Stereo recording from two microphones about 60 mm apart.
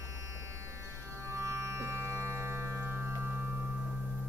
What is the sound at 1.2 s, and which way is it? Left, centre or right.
Music, right.